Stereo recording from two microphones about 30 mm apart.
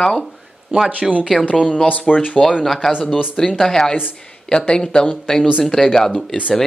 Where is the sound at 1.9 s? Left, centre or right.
Left.